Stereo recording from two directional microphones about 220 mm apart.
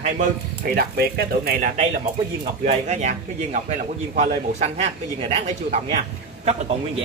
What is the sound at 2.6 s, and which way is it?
A man's voice, 30° right (ahead or behind).